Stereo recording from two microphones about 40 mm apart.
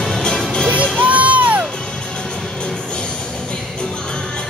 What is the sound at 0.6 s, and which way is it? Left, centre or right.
Music, right.